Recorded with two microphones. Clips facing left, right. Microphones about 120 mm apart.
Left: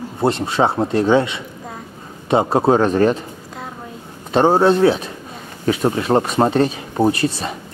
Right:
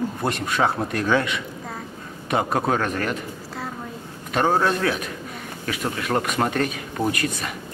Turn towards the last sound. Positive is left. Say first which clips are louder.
# left 7 dB
turn(degrees=30)  # may be behind; listen again after turning